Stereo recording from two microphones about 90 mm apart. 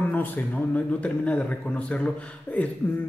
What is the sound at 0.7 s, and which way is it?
Speech, 15° left (ahead or behind).